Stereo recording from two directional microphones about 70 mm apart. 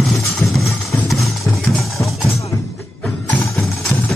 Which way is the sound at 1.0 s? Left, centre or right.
Centre.